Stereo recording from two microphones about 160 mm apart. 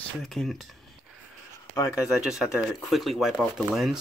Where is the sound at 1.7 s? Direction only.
20° left (ahead or behind).